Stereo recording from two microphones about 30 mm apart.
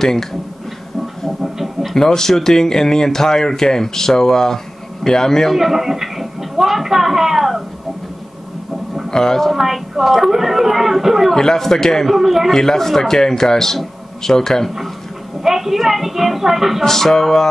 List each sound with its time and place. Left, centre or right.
0.0 s speech: centre
1.4 s a sound: centre
2.0 s speech: centre
5.5 s a sound: centre
9.1 s a woman's voice: centre
9.6 s speech: centre
11.3 s speech: centre
12.1 s speech: centre
12.5 s speech: centre
15.4 s speech: centre
16.8 s speech: centre